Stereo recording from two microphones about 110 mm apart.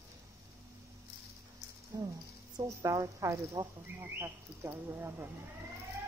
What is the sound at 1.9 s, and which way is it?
Speech, 30° right (ahead or behind).